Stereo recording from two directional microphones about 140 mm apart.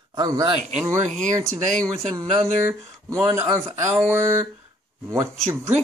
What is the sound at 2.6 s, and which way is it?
Speech, 20° right (ahead or behind).